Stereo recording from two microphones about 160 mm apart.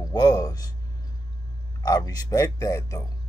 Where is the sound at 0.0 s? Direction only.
25° left (ahead or behind).